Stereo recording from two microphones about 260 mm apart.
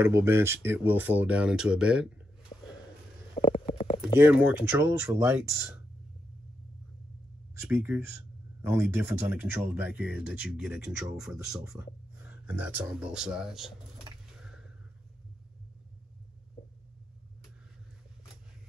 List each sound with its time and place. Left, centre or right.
0.0 s speech: centre
3.3 s stomach rumble: left
4.2 s speech: centre
7.6 s speech: centre